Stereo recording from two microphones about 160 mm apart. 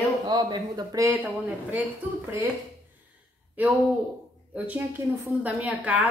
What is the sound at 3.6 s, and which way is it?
A woman's voice, 10° right (ahead or behind).